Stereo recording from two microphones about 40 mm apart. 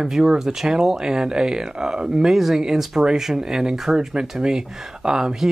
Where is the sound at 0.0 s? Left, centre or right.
Centre.